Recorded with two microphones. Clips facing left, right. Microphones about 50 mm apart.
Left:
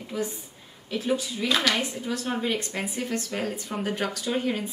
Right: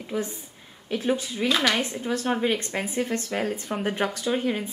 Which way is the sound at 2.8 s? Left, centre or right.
Right.